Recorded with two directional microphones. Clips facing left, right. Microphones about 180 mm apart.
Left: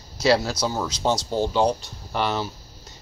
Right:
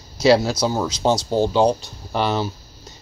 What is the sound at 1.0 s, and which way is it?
Speech, 35° right (ahead or behind).